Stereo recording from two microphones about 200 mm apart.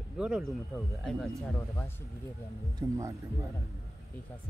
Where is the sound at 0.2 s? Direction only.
Centre (ahead or behind).